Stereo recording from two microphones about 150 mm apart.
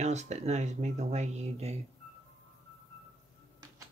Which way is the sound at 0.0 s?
50° right (ahead or behind).